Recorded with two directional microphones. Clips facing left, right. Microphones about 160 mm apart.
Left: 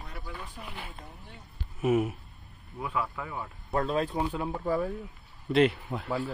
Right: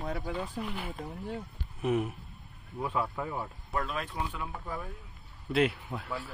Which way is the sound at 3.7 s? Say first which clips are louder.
Left 8 dB; 30° left (ahead or behind).